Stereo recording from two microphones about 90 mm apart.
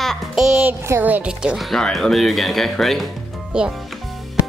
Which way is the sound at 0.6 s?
25° right (ahead or behind).